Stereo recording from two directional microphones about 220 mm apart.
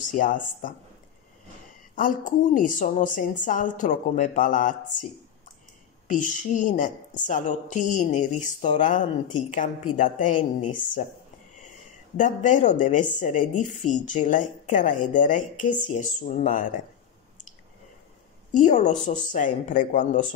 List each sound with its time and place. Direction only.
0.2 s speech: 35° left (ahead or behind)
2.0 s speech: 35° left (ahead or behind)
6.0 s speech: 35° left (ahead or behind)
12.2 s speech: 35° left (ahead or behind)
18.7 s speech: 35° left (ahead or behind)